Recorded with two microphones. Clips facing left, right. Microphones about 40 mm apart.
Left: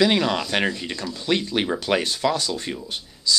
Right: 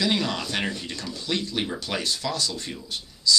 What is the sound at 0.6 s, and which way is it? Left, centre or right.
Speech, left.